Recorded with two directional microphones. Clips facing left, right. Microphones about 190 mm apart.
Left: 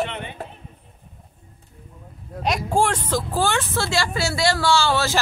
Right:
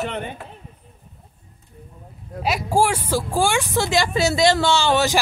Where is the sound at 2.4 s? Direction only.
5° right (ahead or behind).